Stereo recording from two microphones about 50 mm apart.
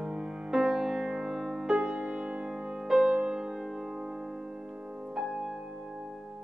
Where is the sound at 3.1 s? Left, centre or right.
Right.